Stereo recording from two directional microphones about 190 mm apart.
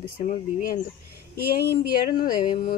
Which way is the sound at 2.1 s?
50° left (ahead or behind).